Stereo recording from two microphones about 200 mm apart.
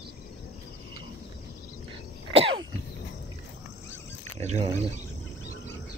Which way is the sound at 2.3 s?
30° right (ahead or behind).